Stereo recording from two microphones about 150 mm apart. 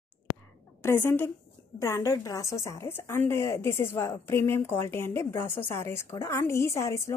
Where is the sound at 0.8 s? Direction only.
15° left (ahead or behind).